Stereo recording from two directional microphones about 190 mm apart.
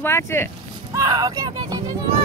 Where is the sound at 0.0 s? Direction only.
10° left (ahead or behind).